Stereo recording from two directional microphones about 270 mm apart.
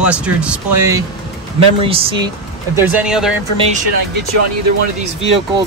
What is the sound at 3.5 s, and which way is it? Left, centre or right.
Speech, right.